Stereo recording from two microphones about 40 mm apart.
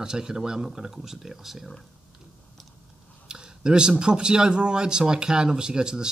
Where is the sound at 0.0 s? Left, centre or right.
Centre.